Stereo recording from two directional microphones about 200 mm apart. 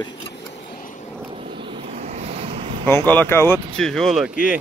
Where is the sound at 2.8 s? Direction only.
10° left (ahead or behind).